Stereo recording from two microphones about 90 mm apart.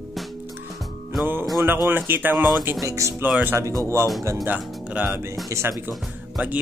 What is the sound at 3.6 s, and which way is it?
Speech, 35° right (ahead or behind).